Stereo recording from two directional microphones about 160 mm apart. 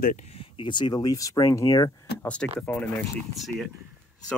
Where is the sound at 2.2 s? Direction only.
5° left (ahead or behind).